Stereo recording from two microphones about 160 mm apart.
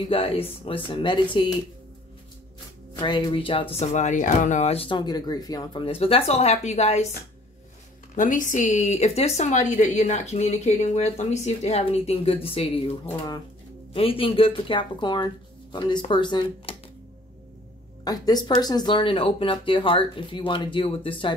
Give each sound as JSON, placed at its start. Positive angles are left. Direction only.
{"t": 0.1, "sound": "speech", "side_deg": 35}
{"t": 3.0, "sound": "speech", "side_deg": 30}
{"t": 3.8, "sound": "speech", "side_deg": 45}
{"t": 8.2, "sound": "a woman's voice", "side_deg": 55}
{"t": 13.1, "sound": "speech", "side_deg": 25}
{"t": 18.0, "sound": "speech", "side_deg": 25}